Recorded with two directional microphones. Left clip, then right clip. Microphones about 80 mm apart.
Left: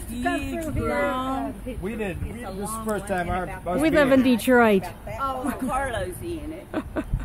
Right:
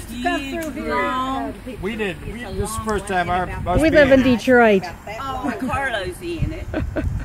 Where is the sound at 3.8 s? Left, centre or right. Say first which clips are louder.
Right 6 dB; centre.